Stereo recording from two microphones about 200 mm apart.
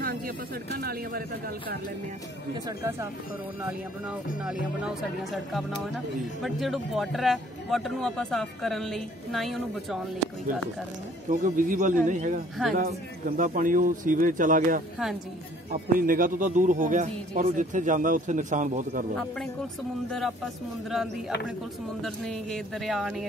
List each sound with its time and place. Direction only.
0.7 s speech: 50° right (ahead or behind)
4.5 s a man's voice: centre (ahead or behind)
11.2 s speech: 40° right (ahead or behind)
13.4 s speech: 40° right (ahead or behind)
20.1 s a man's voice: centre (ahead or behind)
22.0 s a man's voice: centre (ahead or behind)